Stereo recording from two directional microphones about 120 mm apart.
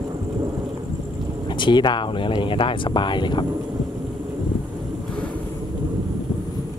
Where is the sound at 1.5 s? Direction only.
40° left (ahead or behind).